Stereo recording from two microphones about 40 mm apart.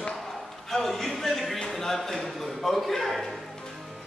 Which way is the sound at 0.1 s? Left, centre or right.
Centre.